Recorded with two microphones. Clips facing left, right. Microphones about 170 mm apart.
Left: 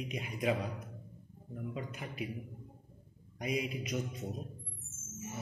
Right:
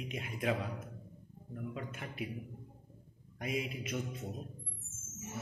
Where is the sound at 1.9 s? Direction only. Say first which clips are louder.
Left 1 dB; centre (ahead or behind).